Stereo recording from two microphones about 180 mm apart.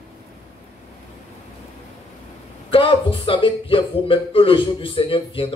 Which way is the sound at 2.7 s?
30° left (ahead or behind).